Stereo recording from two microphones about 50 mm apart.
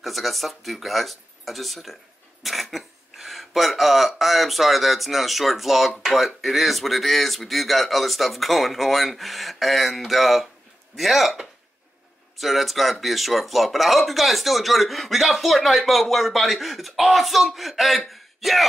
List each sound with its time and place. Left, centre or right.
0.0 s speech: centre